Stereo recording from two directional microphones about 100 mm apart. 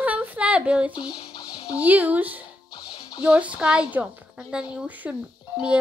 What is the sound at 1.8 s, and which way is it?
A woman's voice, 15° right (ahead or behind).